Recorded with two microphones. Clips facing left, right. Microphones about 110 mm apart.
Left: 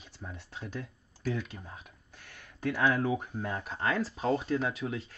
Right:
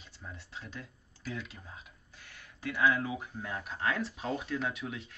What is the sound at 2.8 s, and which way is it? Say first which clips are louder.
Speech: left 1 dB; 45° left (ahead or behind).